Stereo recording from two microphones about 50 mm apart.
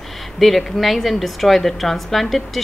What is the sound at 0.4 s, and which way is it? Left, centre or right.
A woman's voice, centre.